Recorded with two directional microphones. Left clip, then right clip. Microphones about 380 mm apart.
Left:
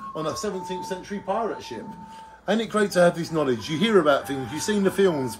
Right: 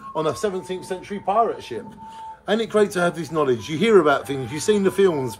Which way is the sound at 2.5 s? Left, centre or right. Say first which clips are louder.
Right 2 dB; centre.